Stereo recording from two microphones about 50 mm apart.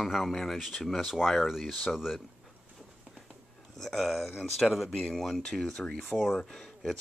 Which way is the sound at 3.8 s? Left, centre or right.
Centre.